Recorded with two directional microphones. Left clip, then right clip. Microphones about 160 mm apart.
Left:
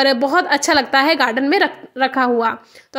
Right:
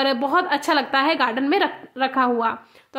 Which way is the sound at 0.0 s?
20° left (ahead or behind).